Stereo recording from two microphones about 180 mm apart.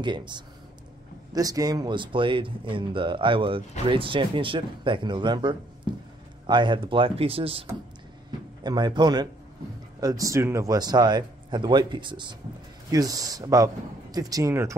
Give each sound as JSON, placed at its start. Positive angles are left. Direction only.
{"t": 0.0, "sound": "speech", "side_deg": -25}
{"t": 8.6, "sound": "speech", "side_deg": -25}